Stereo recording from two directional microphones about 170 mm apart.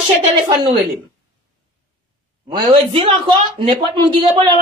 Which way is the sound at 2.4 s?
30° right (ahead or behind).